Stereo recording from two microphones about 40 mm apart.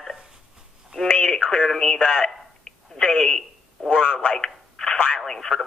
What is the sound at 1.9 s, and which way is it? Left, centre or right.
Speech, left.